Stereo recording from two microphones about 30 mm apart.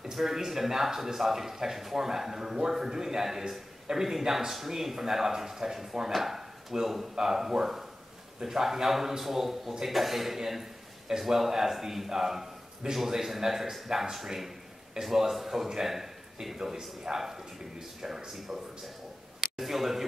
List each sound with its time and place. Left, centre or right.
0.0 s a man's voice: centre
19.4 s a man's voice: centre